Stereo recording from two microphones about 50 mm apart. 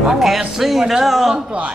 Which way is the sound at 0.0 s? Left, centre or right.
Centre.